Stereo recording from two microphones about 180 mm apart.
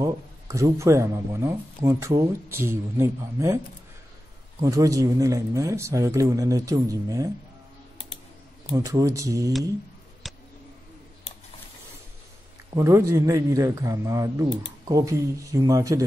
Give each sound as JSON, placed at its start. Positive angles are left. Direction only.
{"t": 0.0, "sound": "speech", "side_deg": -20}
{"t": 4.6, "sound": "speech", "side_deg": -20}
{"t": 8.7, "sound": "speech", "side_deg": -20}
{"t": 10.2, "sound": "a sound", "side_deg": 0}
{"t": 12.7, "sound": "speech", "side_deg": -15}